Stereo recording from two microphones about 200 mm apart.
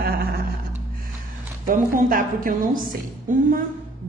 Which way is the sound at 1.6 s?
45° right (ahead or behind).